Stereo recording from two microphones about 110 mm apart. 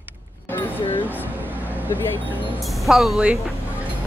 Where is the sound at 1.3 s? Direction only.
15° right (ahead or behind).